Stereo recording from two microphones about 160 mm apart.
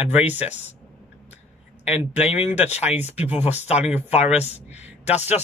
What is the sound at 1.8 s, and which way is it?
Speech, 45° left (ahead or behind).